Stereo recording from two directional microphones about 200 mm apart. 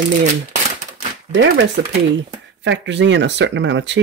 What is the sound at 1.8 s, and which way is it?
Speech, 60° right (ahead or behind).